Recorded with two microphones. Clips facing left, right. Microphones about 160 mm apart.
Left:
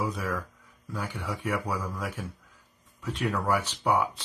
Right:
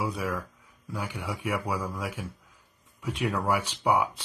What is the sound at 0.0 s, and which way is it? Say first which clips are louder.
Speech: even; 10° right (ahead or behind).